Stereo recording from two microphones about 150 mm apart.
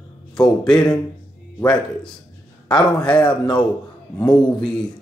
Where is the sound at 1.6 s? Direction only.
5° left (ahead or behind).